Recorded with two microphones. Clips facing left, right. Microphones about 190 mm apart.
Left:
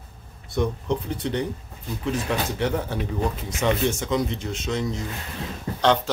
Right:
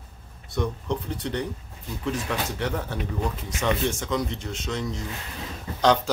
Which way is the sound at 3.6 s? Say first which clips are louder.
Left 3 dB; 20° left (ahead or behind).